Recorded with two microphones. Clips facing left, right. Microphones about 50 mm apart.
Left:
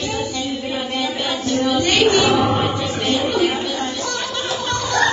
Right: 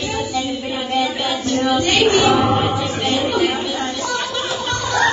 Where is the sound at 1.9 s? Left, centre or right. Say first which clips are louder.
Even; right.